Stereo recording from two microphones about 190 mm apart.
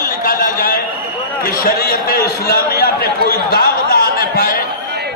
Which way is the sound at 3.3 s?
55° left (ahead or behind).